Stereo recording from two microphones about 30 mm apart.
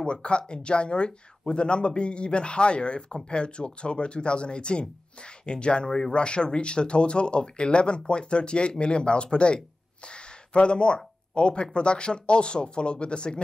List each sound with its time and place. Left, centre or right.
0.0 s speech: left
5.9 s speech: centre
6.1 s speech: left